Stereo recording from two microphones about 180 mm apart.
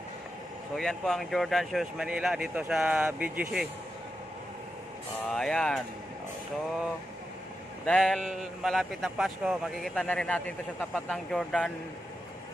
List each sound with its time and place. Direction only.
0.7 s a man's voice: 5° left (ahead or behind)
5.3 s a man's voice: 5° left (ahead or behind)
7.8 s a man's voice: 5° left (ahead or behind)